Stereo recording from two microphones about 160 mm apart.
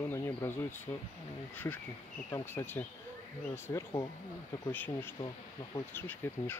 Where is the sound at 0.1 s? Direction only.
15° left (ahead or behind).